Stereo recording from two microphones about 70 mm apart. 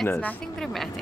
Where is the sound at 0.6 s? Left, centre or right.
Centre.